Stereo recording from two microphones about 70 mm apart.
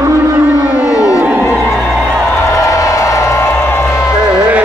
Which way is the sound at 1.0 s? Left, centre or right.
Left.